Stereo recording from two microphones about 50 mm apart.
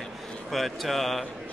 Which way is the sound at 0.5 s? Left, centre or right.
Centre.